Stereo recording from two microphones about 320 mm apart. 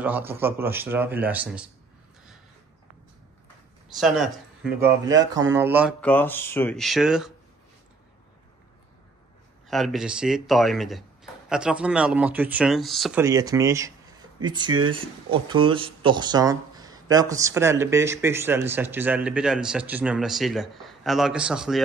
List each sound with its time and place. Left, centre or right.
0.0 s speech: centre
3.9 s speech: centre
9.7 s speech: centre